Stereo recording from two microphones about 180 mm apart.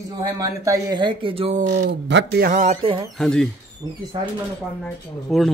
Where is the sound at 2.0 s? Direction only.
80° right.